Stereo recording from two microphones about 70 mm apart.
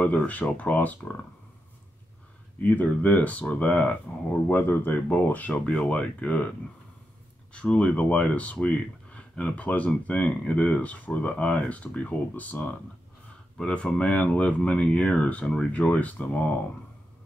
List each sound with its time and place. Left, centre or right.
0.0 s speech: left
2.6 s speech: left
4.5 s speech: left
7.5 s speech: centre
13.6 s speech: centre